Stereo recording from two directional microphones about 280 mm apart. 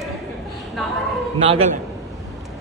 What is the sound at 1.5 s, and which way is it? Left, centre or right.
Speech, right.